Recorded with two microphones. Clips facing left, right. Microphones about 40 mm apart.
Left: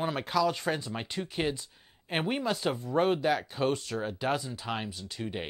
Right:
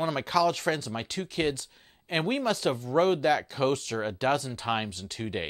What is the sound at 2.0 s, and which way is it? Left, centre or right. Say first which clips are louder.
Speech: right 3 dB; centre.